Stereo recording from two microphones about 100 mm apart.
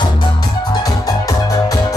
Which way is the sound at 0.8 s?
40° left (ahead or behind).